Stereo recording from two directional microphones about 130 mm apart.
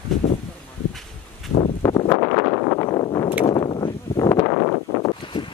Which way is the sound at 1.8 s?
15° left (ahead or behind).